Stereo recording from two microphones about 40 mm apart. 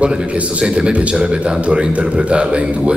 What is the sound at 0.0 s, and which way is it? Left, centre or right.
A man's voice, right.